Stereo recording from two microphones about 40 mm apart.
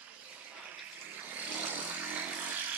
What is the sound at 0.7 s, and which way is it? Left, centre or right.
Vehicle, right.